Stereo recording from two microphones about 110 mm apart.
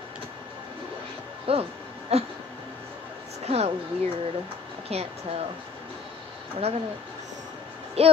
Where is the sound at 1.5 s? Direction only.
60° right (ahead or behind).